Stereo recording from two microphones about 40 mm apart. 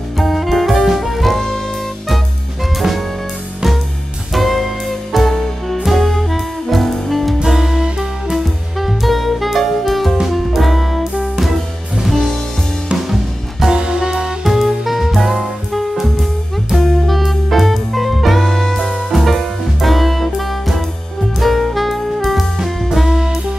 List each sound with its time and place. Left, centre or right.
0.2 s music: centre
2.8 s music: centre
4.3 s music: centre
7.4 s music: centre
8.7 s music: centre
12.0 s music: centre
13.7 s music: centre
14.4 s music: centre
21.4 s saxophone: centre
22.9 s music: centre